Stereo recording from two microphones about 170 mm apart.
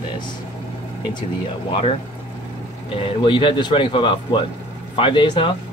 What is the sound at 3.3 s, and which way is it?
Speech, 30° left (ahead or behind).